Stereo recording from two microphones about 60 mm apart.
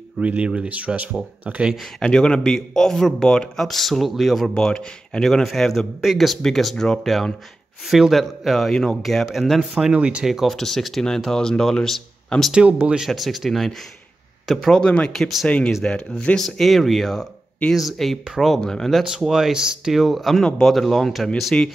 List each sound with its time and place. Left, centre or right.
0.2 s speech: centre
2.0 s speech: centre
4.6 s speech: centre
9.9 s speech: centre
10.2 s speech: centre
10.5 s speech: centre
12.5 s speech: right
13.0 s speech: centre
15.1 s speech: centre
15.4 s speech: centre
16.3 s speech: centre
19.2 s speech: centre
21.5 s speech: centre